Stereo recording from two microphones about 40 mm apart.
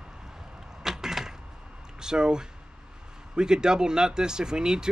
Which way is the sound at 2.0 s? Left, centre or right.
Centre.